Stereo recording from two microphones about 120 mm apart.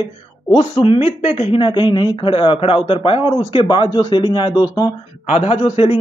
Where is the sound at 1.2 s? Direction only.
60° left (ahead or behind); by 4.7 s 40° left (ahead or behind).